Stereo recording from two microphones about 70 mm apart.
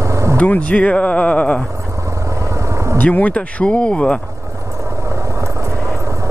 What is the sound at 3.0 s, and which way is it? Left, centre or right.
Speech, left.